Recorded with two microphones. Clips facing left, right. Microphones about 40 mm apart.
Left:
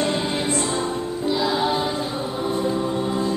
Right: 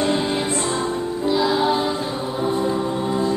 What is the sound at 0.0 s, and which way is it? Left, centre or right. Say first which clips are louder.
Music: right 2 dB; centre.